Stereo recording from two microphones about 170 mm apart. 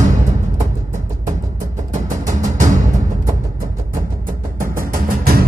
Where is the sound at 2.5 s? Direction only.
50° right (ahead or behind).